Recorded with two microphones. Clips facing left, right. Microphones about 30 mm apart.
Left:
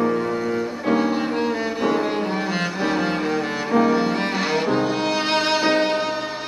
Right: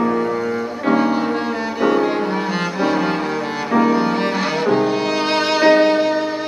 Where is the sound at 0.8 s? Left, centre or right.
Centre.